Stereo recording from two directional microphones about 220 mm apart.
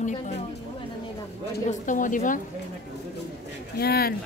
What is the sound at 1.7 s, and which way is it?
Speech, 35° left (ahead or behind).